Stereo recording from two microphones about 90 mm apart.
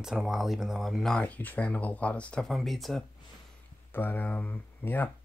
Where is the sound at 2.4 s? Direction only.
Centre (ahead or behind).